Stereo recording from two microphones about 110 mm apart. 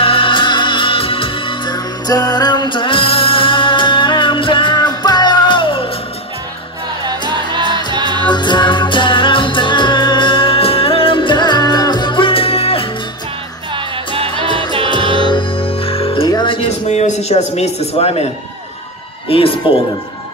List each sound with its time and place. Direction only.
0.0 s music: 55° left (ahead or behind)
7.1 s music: 45° right (ahead or behind)
8.3 s music: 45° left (ahead or behind)
13.7 s music: 55° right (ahead or behind)
14.9 s music: 45° left (ahead or behind)
16.3 s music: 40° left (ahead or behind)
16.8 s speech: 90° left; by 18.2 s 65° left (ahead or behind)
19.2 s a man's voice: 55° left (ahead or behind)